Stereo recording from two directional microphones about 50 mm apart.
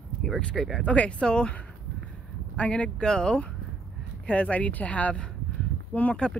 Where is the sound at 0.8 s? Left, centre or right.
Left.